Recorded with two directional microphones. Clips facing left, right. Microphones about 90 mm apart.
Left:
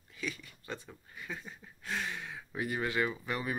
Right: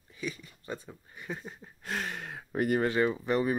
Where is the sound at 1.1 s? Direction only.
30° right (ahead or behind); by 2.9 s 50° right (ahead or behind).